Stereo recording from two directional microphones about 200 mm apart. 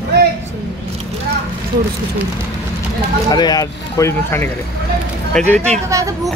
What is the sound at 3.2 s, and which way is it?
Speech, 20° left (ahead or behind).